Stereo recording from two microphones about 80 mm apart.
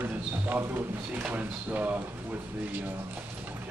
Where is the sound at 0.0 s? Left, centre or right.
Right.